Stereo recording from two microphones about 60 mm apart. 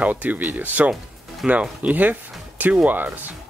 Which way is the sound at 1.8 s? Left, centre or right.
Right.